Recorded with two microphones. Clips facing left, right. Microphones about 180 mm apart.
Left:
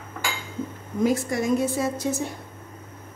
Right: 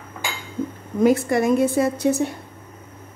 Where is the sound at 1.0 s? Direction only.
60° right (ahead or behind).